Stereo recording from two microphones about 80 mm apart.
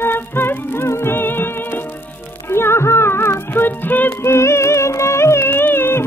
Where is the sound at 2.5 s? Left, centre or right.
Left.